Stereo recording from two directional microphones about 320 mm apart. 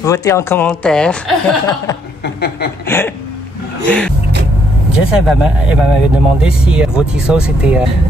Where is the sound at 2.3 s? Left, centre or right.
Left.